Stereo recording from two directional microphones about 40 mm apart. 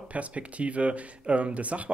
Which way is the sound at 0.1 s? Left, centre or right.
Right.